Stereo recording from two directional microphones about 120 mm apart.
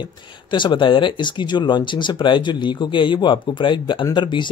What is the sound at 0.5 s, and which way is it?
Speech, 40° left (ahead or behind).